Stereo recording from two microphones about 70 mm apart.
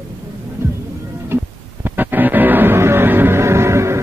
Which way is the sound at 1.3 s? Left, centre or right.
Right.